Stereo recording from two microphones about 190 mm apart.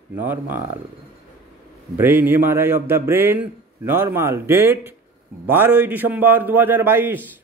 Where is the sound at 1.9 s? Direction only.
10° right (ahead or behind).